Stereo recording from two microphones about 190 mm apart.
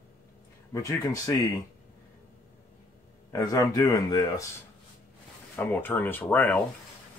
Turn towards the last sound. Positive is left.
turn(degrees=10)  # may be behind; listen again after turning